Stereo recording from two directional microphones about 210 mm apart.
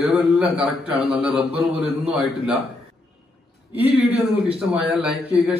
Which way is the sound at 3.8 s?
30° right (ahead or behind).